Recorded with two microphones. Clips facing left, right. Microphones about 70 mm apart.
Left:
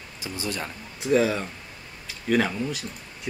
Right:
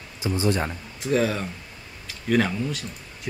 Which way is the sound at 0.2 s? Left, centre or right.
Right.